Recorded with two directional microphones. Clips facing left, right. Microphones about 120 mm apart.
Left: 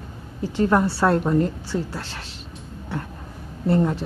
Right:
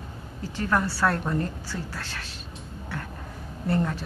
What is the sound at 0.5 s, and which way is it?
A woman's voice, 20° left (ahead or behind).